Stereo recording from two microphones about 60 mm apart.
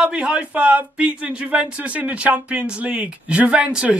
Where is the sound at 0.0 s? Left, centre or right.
Centre.